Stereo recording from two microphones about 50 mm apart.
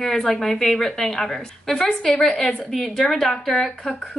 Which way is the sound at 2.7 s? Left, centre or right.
Centre.